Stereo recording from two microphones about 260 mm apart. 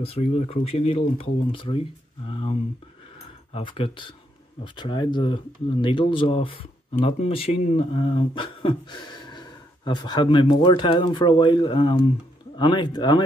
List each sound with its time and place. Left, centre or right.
0.0 s speech: left
3.5 s speech: left